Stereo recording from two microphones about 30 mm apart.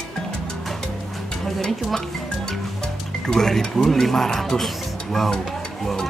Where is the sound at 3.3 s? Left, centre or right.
Left.